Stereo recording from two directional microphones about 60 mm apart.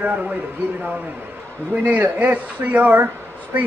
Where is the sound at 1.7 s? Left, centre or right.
Right.